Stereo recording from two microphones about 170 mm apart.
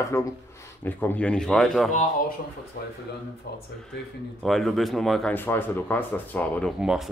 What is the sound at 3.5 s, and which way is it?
Speech, 70° left (ahead or behind).